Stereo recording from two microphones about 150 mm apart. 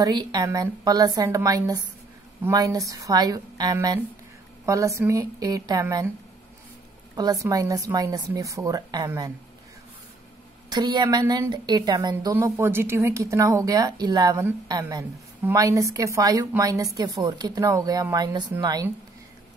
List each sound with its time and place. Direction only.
0.0 s a woman's voice: 25° right (ahead or behind)
7.2 s a woman's voice: 25° right (ahead or behind)
10.7 s a woman's voice: 30° right (ahead or behind)